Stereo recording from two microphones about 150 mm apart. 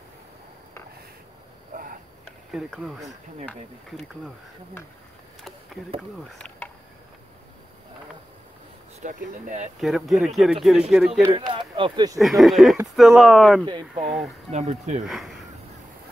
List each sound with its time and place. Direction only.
1.7 s a sound: 65° right (ahead or behind)
2.5 s speech: centre (ahead or behind)
6.3 s a sound: 10° left (ahead or behind)
9.0 s speech: 55° right (ahead or behind)
9.8 s speech: centre (ahead or behind)
11.3 s speech: 35° right (ahead or behind)
12.2 s speech: centre (ahead or behind)
13.7 s speech: 35° right (ahead or behind)
14.0 s speech: centre (ahead or behind)
14.5 s speech: 50° right (ahead or behind)
15.0 s speech: centre (ahead or behind)